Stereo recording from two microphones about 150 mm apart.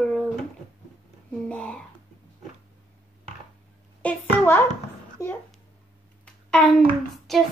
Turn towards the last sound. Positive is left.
turn(degrees=0)  # may be behind; listen again after turning